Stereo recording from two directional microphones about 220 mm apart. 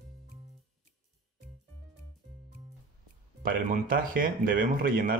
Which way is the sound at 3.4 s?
40° right (ahead or behind).